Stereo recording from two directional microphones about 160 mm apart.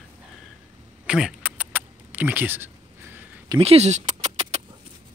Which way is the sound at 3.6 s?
40° right (ahead or behind).